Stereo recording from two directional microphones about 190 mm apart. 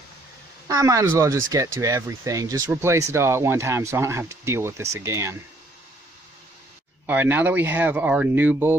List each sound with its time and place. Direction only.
0.7 s speech: 15° right (ahead or behind)
7.1 s speech: 10° right (ahead or behind)